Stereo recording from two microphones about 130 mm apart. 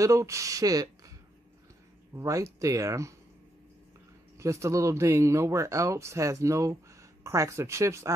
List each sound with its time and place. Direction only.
0.0 s speech: 25° right (ahead or behind)
2.1 s speech: 25° right (ahead or behind)
4.4 s speech: 20° right (ahead or behind)